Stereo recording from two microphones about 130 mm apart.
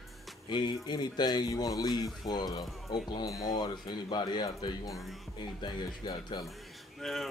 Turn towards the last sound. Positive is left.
turn(degrees=0)  # may be behind; listen again after turning